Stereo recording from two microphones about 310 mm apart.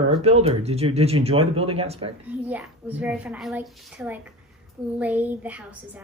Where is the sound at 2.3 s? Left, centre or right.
Centre.